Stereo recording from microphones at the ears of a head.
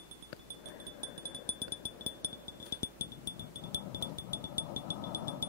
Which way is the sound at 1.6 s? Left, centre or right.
Left.